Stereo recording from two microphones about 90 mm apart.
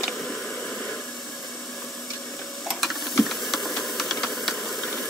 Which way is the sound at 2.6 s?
Centre (ahead or behind).